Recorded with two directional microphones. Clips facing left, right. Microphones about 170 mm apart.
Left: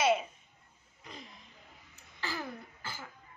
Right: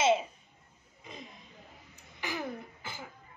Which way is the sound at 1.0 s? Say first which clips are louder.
Right 2 dB; 20° right (ahead or behind).